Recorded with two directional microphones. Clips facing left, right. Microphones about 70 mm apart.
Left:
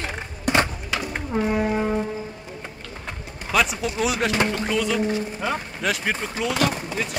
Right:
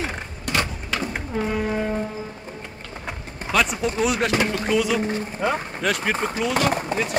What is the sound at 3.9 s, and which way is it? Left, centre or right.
A man's voice, centre.